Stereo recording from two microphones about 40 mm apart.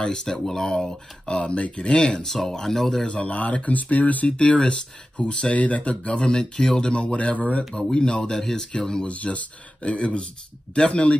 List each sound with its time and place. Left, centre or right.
0.0 s speech: centre
2.2 s speech: centre
3.1 s speech: left
4.3 s speech: left
7.0 s speech: left
9.0 s speech: left